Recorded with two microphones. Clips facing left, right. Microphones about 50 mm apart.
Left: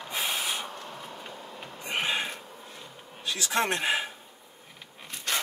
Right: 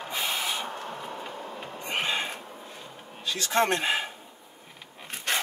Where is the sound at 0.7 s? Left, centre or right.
Right.